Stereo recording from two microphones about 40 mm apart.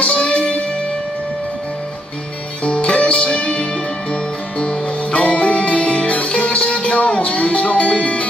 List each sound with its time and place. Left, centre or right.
0.0 s music: left
2.6 s music: left